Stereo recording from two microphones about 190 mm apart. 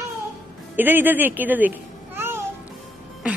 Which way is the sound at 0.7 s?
10° right (ahead or behind).